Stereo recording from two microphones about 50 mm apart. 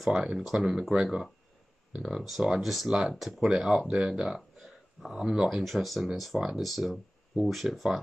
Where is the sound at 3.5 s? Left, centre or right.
Centre.